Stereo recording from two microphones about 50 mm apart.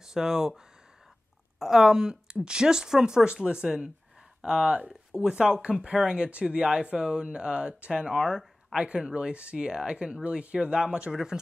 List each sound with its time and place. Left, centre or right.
0.0 s speech: centre
1.6 s a woman's voice: centre